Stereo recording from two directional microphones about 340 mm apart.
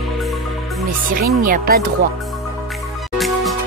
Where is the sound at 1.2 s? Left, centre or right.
Right.